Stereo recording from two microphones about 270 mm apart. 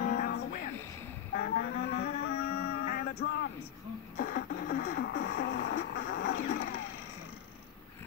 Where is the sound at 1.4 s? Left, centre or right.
Left.